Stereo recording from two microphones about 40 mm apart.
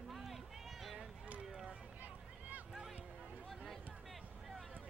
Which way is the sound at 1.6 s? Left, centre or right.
Right.